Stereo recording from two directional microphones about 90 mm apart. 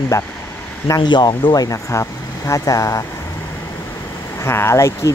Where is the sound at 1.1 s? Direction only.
55° left (ahead or behind); by 3.0 s 35° left (ahead or behind).